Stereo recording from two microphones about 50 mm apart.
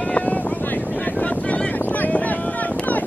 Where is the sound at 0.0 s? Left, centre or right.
Left.